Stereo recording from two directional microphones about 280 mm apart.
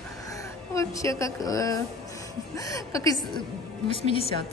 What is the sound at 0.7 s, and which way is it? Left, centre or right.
A woman's voice, centre.